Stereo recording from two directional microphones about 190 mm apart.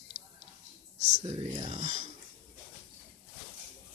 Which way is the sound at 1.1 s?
35° right (ahead or behind).